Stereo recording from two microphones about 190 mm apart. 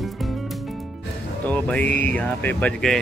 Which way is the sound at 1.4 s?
10° left (ahead or behind).